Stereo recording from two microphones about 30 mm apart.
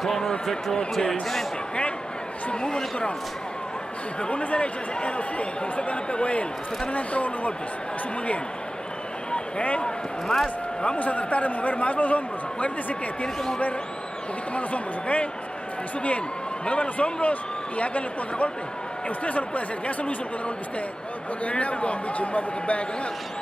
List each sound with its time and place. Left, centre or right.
0.0 s a man's voice: centre
2.5 s speech: left
4.3 s a man's voice: left
4.6 s a man's voice: left
10.2 s a man's voice: centre
11.0 s a man's voice: left
14.5 s speech: left
16.6 s a man's voice: left